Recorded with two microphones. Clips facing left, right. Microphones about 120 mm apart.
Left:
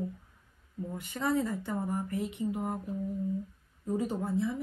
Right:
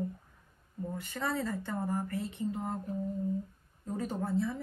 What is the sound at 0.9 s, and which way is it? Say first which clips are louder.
Speech: left 5 dB; 20° left (ahead or behind).